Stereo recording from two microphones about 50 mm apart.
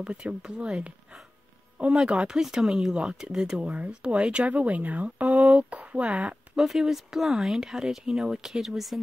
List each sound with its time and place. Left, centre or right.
0.0 s speech: centre
2.0 s speech: centre
6.5 s speech: centre